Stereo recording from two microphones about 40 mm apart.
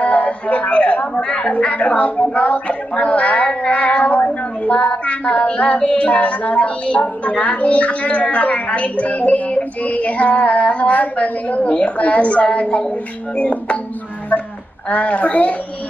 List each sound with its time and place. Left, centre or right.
0.0 s a man's voice: left
1.5 s speech: left
14.9 s speech: left